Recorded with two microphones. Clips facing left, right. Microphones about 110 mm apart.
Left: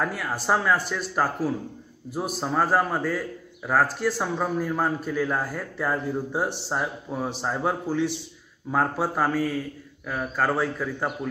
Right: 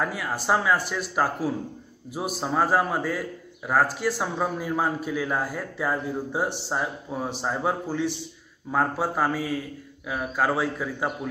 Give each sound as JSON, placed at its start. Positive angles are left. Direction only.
{"t": 0.0, "sound": "a man's voice", "side_deg": 0}